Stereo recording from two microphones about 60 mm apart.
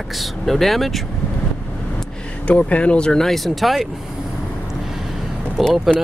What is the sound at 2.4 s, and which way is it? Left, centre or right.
Speech, left.